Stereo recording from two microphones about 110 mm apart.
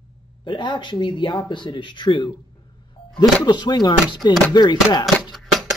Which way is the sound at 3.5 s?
40° left (ahead or behind).